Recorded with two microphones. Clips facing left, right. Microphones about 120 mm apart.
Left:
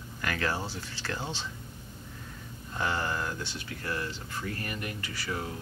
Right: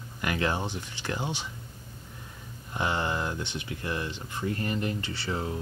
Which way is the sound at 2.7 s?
20° right (ahead or behind).